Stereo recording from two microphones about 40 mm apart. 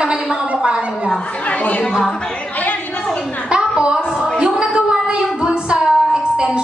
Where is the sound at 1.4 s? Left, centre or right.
Left.